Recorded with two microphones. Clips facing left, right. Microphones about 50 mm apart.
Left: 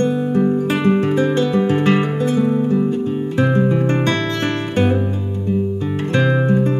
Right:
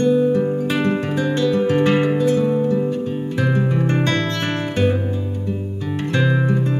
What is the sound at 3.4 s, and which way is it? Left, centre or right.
Music, centre.